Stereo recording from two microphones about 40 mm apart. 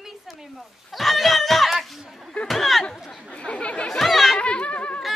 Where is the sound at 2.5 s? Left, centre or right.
Centre.